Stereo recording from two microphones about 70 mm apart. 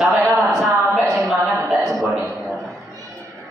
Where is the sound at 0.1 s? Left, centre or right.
Right.